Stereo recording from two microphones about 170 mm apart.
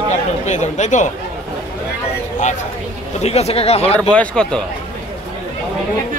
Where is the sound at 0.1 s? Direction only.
45° left (ahead or behind).